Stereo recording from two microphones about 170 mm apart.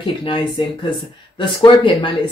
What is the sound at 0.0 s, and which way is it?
Speech, 30° left (ahead or behind).